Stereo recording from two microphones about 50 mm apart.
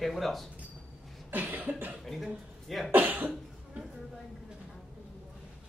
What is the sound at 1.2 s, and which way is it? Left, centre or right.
Cough, right.